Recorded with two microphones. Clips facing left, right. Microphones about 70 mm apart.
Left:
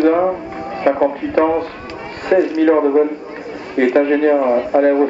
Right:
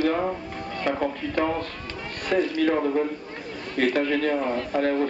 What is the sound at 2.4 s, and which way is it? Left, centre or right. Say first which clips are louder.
Speech: left 8 dB; centre.